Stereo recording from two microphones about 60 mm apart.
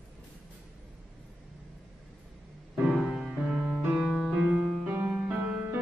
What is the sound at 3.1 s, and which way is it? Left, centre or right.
Music, centre.